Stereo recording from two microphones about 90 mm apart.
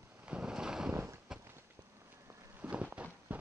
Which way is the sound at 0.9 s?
30° right (ahead or behind).